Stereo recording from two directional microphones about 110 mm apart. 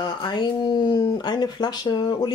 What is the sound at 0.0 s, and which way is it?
Speech, 40° left (ahead or behind).